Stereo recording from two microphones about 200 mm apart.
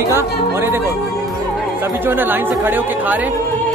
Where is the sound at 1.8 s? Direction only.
10° right (ahead or behind).